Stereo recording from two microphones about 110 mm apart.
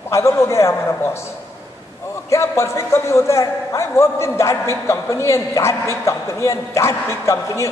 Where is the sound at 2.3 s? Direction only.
25° left (ahead or behind).